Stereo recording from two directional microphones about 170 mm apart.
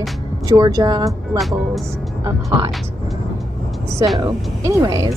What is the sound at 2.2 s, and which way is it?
Speech, 20° right (ahead or behind).